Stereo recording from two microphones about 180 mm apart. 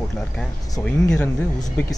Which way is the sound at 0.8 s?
5° left (ahead or behind).